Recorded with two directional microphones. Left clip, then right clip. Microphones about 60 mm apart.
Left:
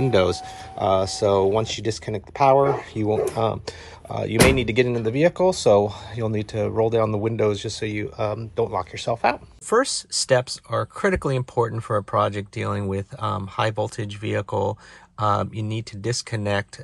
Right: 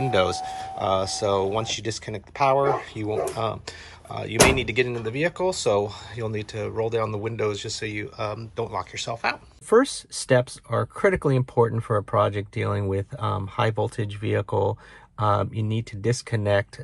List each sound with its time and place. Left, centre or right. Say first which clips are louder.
0.0 s speech: left 2 dB; right
2.9 s speech: left 4 dB; centre
9.1 s speech: left 6 dB; centre
9.7 s speech: right 1 dB; left